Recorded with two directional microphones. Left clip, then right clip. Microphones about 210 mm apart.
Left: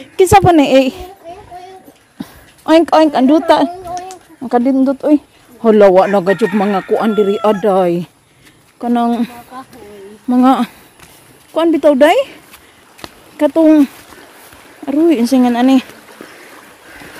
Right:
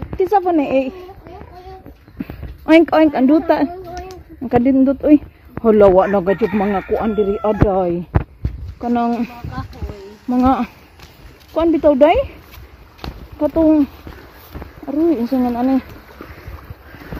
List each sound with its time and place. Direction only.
0.2 s a woman's voice: 40° left (ahead or behind)
2.6 s a woman's voice: 10° left (ahead or behind)
5.7 s a woman's voice: 15° left (ahead or behind)
6.3 s speech: 50° left (ahead or behind)
7.0 s speech: 25° left (ahead or behind)
8.7 s a woman's voice: 20° left (ahead or behind)
13.0 s a sound: 30° left (ahead or behind)
14.9 s a woman's voice: 35° left (ahead or behind)